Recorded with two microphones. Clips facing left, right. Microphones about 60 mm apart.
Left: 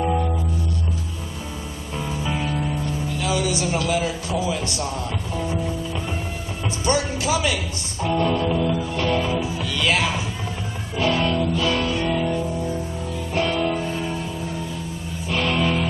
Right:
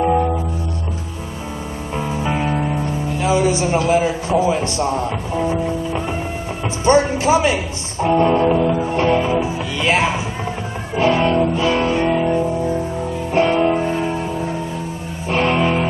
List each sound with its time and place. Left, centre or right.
0.0 s music: right
2.0 s music: right
6.8 s speech: right
11.0 s music: right